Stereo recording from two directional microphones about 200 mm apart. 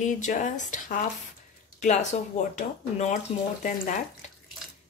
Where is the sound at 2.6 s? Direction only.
35° left (ahead or behind).